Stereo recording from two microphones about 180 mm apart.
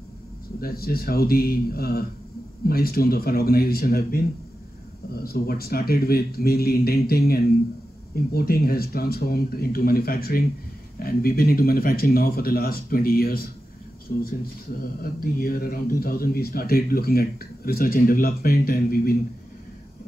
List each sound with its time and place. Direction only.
0.6 s a man's voice: 55° left (ahead or behind)